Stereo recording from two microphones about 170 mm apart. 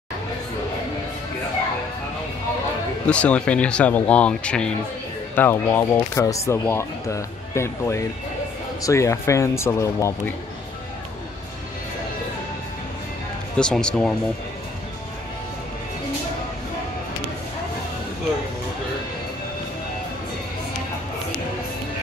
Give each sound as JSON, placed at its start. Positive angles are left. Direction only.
{"t": 3.1, "sound": "speech", "side_deg": 5}
{"t": 13.6, "sound": "speech", "side_deg": 5}